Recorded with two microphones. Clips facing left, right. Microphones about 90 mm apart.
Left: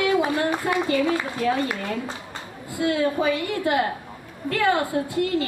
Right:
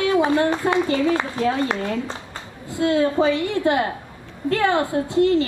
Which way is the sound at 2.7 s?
30° right (ahead or behind).